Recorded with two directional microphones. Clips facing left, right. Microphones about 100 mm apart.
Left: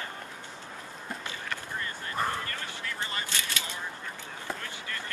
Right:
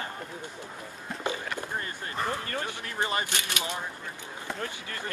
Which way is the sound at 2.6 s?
20° right (ahead or behind).